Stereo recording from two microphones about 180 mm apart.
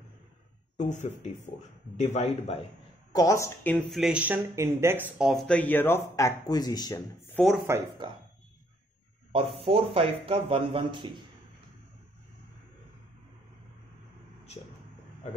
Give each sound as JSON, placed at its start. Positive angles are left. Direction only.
{"t": 0.7, "sound": "speech", "side_deg": 40}
{"t": 3.1, "sound": "speech", "side_deg": 20}
{"t": 4.0, "sound": "speech", "side_deg": -5}
{"t": 7.3, "sound": "speech", "side_deg": 0}
{"t": 9.3, "sound": "speech", "side_deg": -30}